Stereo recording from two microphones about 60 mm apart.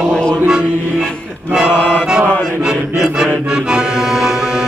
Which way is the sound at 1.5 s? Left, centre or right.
Centre.